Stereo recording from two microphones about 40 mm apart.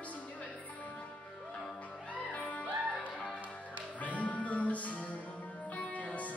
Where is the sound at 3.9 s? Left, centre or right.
Left.